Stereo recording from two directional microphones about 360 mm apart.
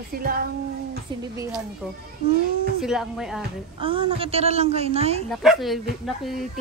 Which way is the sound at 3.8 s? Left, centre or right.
Centre.